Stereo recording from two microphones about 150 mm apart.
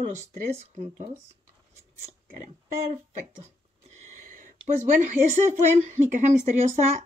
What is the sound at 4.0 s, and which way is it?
Speech, 60° right (ahead or behind).